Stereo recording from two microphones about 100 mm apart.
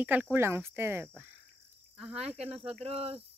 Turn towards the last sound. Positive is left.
turn(degrees=-80)